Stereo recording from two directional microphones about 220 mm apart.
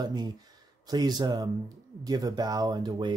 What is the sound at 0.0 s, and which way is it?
Speech, 20° right (ahead or behind).